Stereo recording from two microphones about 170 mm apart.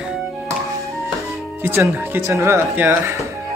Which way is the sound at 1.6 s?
15° right (ahead or behind).